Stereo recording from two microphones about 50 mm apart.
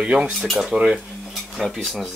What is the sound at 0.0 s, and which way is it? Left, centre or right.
Speech, right.